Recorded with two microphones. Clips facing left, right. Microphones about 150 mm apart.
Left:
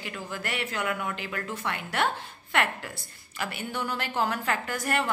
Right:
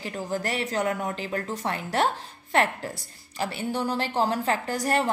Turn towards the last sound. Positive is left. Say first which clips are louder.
# right 4 dB
turn(degrees=-35)  # may be behind; listen again after turning